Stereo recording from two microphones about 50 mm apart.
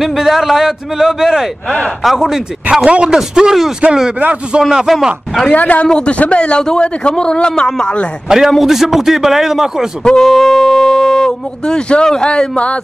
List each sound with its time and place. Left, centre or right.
0.0 s a man's voice: centre
2.8 s a man's voice: right
5.5 s a man's voice: left
8.3 s a man's voice: centre
10.0 s speech: centre